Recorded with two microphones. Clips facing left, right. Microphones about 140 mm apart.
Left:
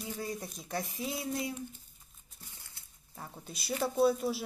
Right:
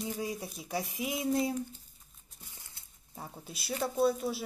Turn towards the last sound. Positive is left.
turn(degrees=0)  # may be behind; listen again after turning